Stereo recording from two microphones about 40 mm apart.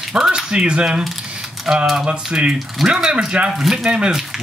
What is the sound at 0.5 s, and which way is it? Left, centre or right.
Speech, right.